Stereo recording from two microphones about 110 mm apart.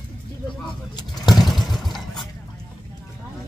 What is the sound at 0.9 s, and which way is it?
Vehicle, 40° left (ahead or behind).